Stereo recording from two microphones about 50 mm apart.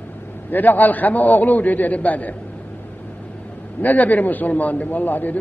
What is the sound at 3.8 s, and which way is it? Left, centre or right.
A man's voice, left.